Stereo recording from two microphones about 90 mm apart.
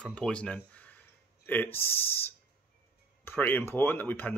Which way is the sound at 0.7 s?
15° left (ahead or behind).